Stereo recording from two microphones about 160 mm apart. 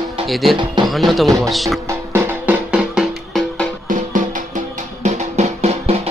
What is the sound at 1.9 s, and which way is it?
Music, 15° right (ahead or behind).